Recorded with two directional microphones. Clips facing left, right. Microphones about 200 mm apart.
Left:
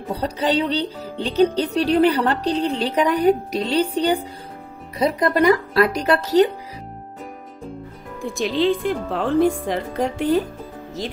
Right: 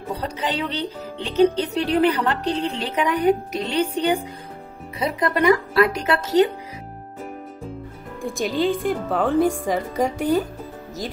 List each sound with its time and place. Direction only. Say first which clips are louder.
0.2 s speech: left 7 dB; 35° left (ahead or behind)
8.2 s speech: left 2 dB; centre (ahead or behind)